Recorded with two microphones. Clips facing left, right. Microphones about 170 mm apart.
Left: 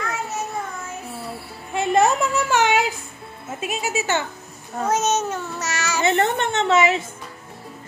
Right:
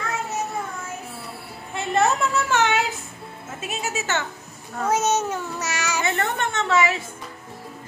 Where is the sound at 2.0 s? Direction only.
15° left (ahead or behind).